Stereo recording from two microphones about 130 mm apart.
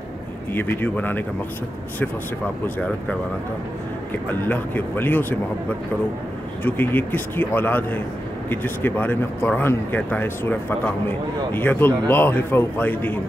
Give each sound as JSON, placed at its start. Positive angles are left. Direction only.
{"t": 0.5, "sound": "speech", "side_deg": 15}
{"t": 2.6, "sound": "speech", "side_deg": 10}
{"t": 4.3, "sound": "speech", "side_deg": 15}
{"t": 6.6, "sound": "speech", "side_deg": 15}